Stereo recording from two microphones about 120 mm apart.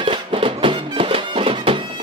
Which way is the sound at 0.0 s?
45° right (ahead or behind).